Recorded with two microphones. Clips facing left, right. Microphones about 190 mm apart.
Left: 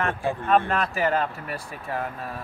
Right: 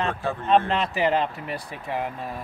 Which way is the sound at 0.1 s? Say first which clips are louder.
Left 1 dB; 15° left (ahead or behind).